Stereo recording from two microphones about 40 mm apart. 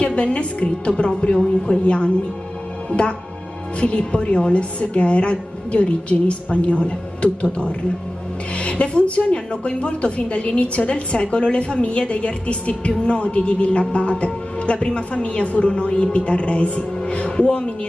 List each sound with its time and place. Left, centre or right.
0.0 s speech: left
8.5 s music: left
9.3 s speech: left